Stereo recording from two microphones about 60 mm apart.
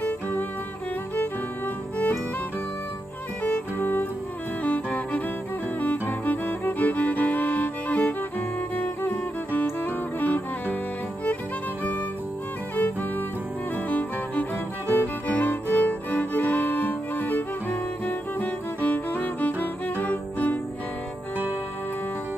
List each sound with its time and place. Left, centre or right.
0.0 s music: left
3.4 s music: left
13.8 s music: left